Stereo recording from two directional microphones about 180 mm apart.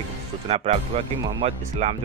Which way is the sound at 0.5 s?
35° right (ahead or behind).